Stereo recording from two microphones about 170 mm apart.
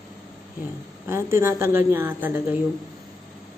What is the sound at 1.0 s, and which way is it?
A woman's voice, 15° right (ahead or behind).